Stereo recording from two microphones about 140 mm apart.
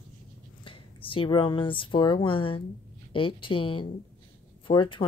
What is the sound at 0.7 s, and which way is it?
Speech, 40° left (ahead or behind).